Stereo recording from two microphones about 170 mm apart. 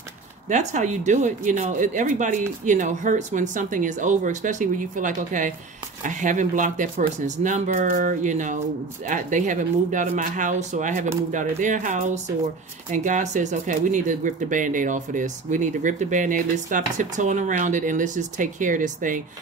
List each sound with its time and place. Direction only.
0.5 s speech: 45° right (ahead or behind)